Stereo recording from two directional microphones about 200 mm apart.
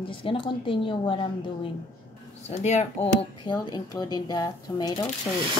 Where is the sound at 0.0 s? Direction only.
25° left (ahead or behind).